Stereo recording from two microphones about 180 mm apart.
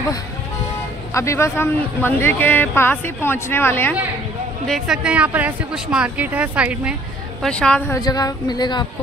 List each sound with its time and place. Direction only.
1.1 s a man's voice: 15° left (ahead or behind)
4.6 s speech: centre (ahead or behind)
7.4 s speech: 5° left (ahead or behind)
7.9 s speech: 20° left (ahead or behind)